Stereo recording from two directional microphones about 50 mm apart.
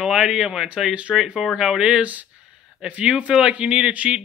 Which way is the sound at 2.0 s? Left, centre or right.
Right.